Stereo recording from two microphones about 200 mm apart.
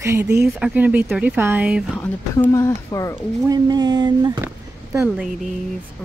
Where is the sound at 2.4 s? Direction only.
15° left (ahead or behind).